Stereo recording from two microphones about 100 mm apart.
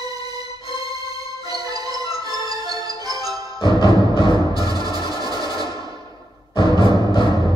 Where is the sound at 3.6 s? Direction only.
40° right (ahead or behind).